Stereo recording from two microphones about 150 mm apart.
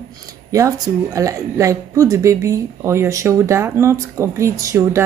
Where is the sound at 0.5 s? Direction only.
20° right (ahead or behind).